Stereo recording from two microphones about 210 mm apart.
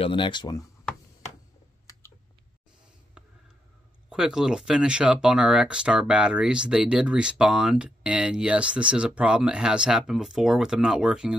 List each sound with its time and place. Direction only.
0.0 s speech: 25° left (ahead or behind)
4.1 s speech: 5° right (ahead or behind)